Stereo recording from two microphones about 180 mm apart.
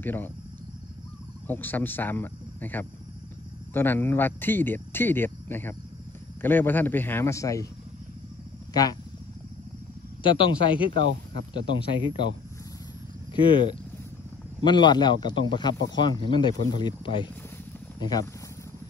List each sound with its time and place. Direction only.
0.0 s speech: 10° left (ahead or behind)
1.5 s speech: 10° left (ahead or behind)
10.2 s speech: 30° left (ahead or behind)
13.3 s speech: 25° left (ahead or behind)